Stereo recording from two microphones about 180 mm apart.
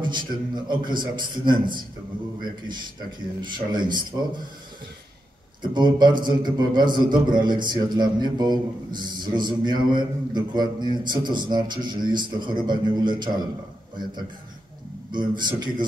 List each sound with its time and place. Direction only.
0.0 s a man's voice: 25° right (ahead or behind)
3.3 s a man's voice: 25° right (ahead or behind)
5.6 s a man's voice: 25° right (ahead or behind)
15.0 s a man's voice: 25° right (ahead or behind)